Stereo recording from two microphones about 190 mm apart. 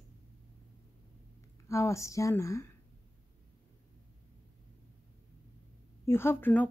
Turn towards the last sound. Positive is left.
turn(degrees=10)  # may be behind; listen again after turning